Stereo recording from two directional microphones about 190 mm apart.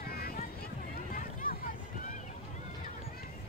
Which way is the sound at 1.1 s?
45° left (ahead or behind).